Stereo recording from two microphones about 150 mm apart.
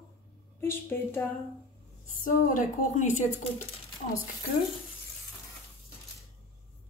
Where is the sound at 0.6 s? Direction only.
15° left (ahead or behind).